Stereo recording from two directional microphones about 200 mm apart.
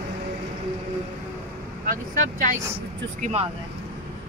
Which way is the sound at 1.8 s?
45° right (ahead or behind).